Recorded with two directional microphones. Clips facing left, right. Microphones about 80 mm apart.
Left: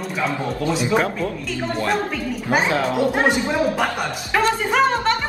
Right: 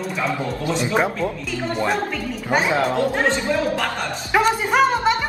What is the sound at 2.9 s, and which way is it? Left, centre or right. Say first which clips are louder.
Speech: left 1 dB; centre.